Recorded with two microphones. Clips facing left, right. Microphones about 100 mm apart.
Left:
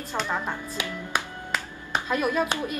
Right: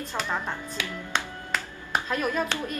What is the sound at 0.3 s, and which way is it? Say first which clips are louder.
A woman's voice: left 1 dB; 15° left (ahead or behind).